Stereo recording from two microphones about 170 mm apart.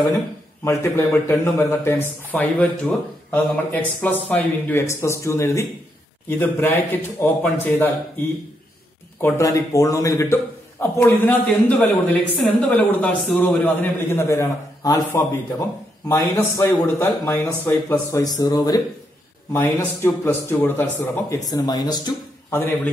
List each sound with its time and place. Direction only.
0.7 s speech: 15° left (ahead or behind)
9.2 s a man's voice: 20° left (ahead or behind)